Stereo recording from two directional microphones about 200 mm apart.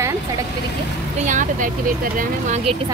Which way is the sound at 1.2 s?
40° right (ahead or behind).